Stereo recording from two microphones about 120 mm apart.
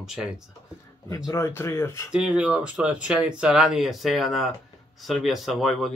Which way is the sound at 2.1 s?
10° right (ahead or behind).